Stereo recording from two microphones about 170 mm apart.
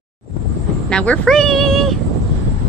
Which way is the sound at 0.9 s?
5° left (ahead or behind).